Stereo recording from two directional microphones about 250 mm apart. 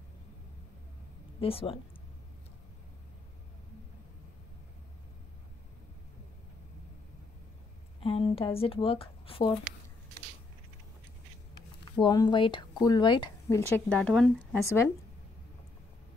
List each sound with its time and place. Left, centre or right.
1.4 s speech: left
8.0 s speech: left
11.8 s speech: centre